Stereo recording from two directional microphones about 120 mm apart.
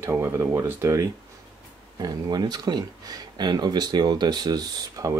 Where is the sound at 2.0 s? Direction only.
35° right (ahead or behind).